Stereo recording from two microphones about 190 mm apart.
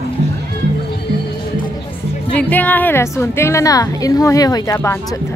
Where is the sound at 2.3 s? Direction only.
10° left (ahead or behind).